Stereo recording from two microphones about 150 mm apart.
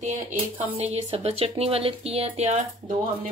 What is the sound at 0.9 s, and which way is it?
Speech, 45° right (ahead or behind).